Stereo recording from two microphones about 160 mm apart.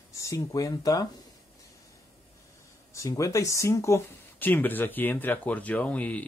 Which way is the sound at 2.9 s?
20° left (ahead or behind).